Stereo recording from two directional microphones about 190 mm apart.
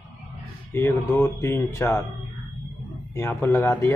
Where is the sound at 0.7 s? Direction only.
10° left (ahead or behind).